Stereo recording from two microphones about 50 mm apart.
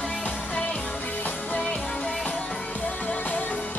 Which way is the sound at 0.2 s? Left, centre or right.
Left.